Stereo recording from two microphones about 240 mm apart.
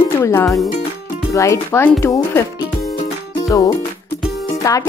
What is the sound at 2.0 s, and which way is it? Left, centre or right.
Music, centre.